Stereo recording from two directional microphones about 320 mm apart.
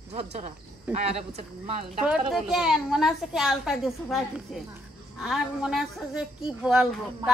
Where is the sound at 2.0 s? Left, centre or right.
Centre.